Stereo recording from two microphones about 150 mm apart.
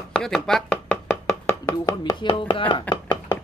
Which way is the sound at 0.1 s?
5° left (ahead or behind).